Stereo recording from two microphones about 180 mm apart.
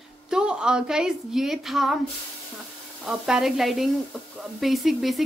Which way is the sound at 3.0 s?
5° right (ahead or behind).